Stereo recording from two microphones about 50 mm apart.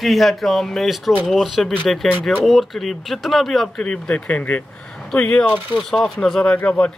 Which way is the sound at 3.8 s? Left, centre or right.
Left.